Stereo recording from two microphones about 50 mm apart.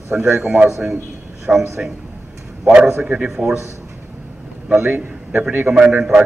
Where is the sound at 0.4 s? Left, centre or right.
Right.